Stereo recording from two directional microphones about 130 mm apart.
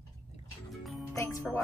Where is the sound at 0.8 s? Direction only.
Centre (ahead or behind).